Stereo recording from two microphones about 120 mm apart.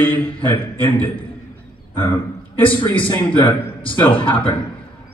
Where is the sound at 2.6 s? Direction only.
45° left (ahead or behind).